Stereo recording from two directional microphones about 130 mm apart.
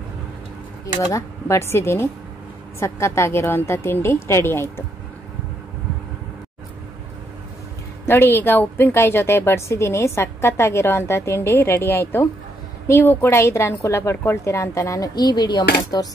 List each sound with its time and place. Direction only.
1.1 s a woman's voice: 20° left (ahead or behind)
8.0 s a woman's voice: 15° left (ahead or behind)